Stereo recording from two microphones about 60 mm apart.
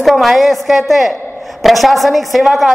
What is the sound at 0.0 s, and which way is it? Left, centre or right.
A woman's voice, centre.